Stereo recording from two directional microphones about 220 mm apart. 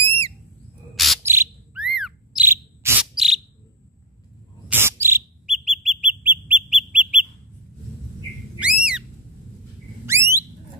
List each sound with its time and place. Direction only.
0.0 s squawk: 25° right (ahead or behind)
0.9 s bird: centre (ahead or behind)
1.2 s bird: 10° right (ahead or behind)
4.6 s bird: 10° right (ahead or behind)
8.5 s a sound: 5° right (ahead or behind)